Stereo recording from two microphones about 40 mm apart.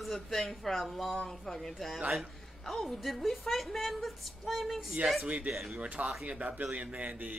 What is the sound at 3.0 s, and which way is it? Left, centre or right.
A man's voice, centre.